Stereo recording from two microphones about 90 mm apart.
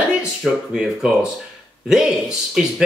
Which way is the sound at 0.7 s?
5° right (ahead or behind).